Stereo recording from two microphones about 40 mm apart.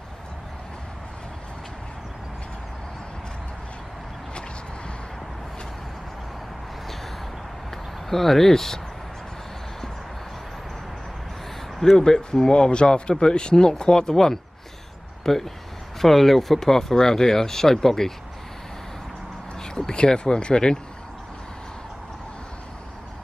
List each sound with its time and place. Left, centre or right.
7.7 s speech: centre
12.0 s speech: centre
19.6 s speech: centre